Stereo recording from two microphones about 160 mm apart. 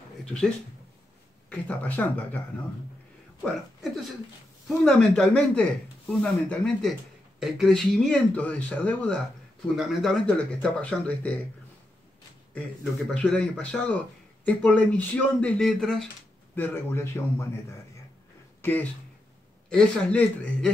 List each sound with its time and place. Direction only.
0.2 s a sound: 5° left (ahead or behind)
1.5 s speech: 10° left (ahead or behind)
3.4 s speech: centre (ahead or behind)
13.1 s speech: 5° left (ahead or behind)
16.5 s speech: 15° left (ahead or behind)
18.6 s speech: 10° left (ahead or behind)